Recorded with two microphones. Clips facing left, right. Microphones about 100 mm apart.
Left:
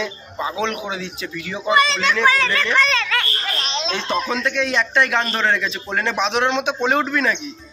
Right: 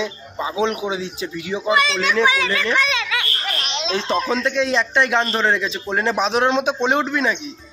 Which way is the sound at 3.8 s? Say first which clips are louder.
Right 4 dB; 5° right (ahead or behind).